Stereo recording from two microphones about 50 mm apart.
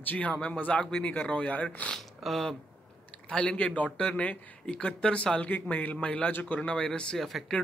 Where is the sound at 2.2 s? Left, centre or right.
Centre.